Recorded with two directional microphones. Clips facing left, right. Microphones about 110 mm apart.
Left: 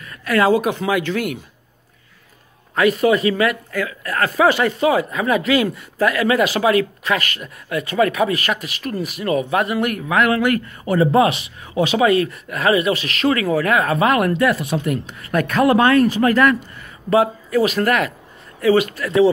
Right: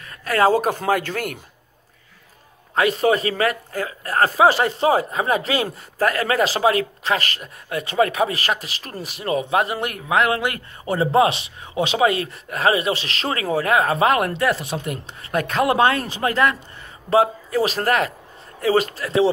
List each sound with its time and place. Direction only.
0.0 s a woman's voice: 35° right (ahead or behind)
2.7 s speech: 30° right (ahead or behind)